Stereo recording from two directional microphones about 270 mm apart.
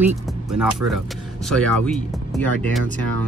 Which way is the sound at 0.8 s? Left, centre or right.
Right.